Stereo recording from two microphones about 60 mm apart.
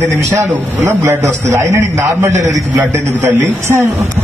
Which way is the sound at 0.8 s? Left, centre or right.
Right.